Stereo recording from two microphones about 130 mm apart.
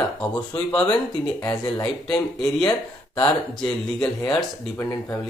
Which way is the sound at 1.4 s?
25° left (ahead or behind).